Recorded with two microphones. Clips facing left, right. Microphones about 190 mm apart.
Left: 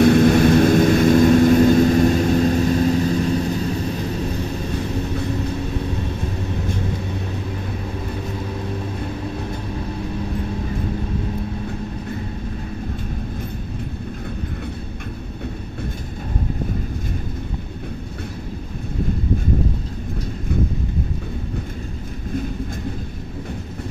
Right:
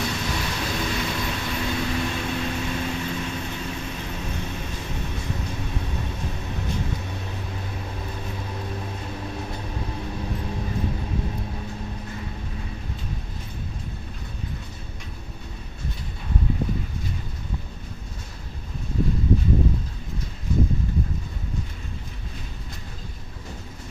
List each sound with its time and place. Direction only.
0.0 s vehicle: 55° left (ahead or behind); by 4.4 s 35° left (ahead or behind)